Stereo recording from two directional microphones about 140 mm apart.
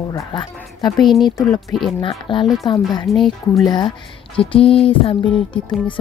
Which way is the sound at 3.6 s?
30° left (ahead or behind).